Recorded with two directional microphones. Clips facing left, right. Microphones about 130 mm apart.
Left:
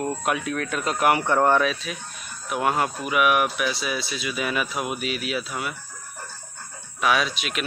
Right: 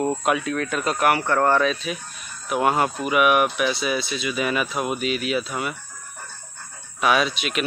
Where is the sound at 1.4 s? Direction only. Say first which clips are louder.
Even; 5° left (ahead or behind).